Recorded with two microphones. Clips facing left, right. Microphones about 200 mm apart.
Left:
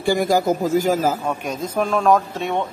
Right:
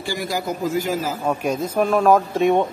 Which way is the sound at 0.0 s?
50° left (ahead or behind).